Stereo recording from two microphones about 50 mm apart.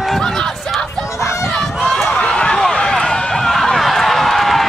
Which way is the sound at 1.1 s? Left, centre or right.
Left.